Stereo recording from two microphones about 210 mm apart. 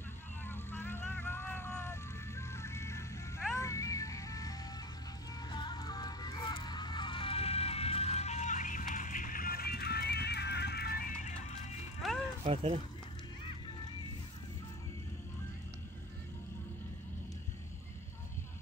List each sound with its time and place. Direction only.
0.5 s vehicle: 10° left (ahead or behind)
3.5 s music: 15° left (ahead or behind); by 11.3 s 45° left (ahead or behind)
12.0 s music: centre (ahead or behind)
12.4 s speech: 35° right (ahead or behind)